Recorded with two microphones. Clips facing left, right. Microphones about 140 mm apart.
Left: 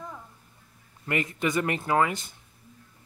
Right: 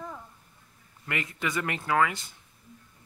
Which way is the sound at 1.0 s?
30° left (ahead or behind).